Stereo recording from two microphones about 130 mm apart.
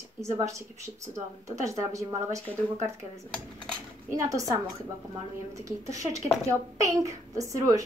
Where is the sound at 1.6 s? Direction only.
25° right (ahead or behind).